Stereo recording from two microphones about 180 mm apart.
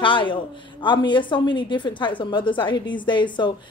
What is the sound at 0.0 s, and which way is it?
A woman's voice, 25° left (ahead or behind).